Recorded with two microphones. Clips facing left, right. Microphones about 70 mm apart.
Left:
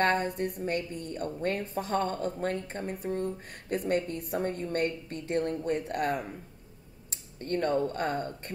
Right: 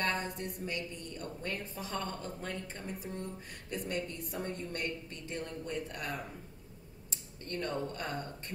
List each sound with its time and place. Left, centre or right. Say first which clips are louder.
0.0 s a woman's voice: left 8 dB; left
7.4 s speech: left 9 dB; left